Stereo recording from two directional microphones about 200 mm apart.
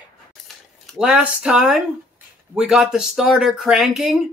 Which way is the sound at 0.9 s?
5° right (ahead or behind).